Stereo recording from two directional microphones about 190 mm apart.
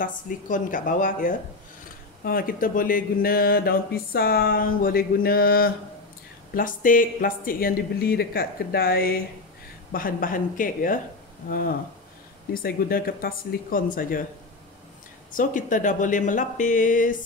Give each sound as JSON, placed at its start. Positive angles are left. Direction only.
{"t": 0.0, "sound": "speech", "side_deg": 45}
{"t": 15.3, "sound": "speech", "side_deg": 45}